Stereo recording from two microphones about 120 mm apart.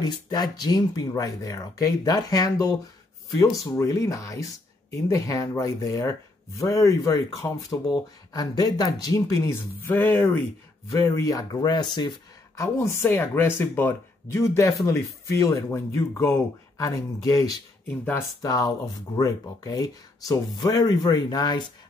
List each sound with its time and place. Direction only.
0.0 s speech: 35° left (ahead or behind)
7.9 s speech: 30° left (ahead or behind); by 10.3 s 15° left (ahead or behind)
10.9 s speech: 30° left (ahead or behind)
12.5 s speech: 25° left (ahead or behind)
17.8 s speech: 15° left (ahead or behind)
18.4 s speech: 30° left (ahead or behind)